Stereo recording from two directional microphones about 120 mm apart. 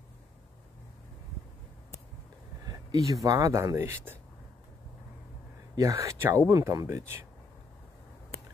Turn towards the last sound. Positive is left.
turn(degrees=-20)  # may be behind; listen again after turning